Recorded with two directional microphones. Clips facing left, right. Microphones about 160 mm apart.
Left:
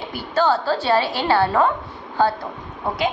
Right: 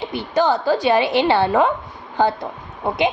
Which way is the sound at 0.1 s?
20° right (ahead or behind).